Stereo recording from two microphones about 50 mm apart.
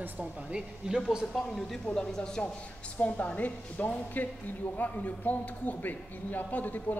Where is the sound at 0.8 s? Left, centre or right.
Centre.